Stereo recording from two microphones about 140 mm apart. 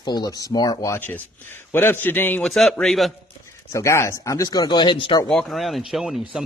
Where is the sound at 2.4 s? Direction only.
Centre (ahead or behind).